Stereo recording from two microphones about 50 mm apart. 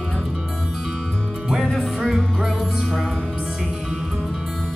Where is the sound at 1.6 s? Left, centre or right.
Centre.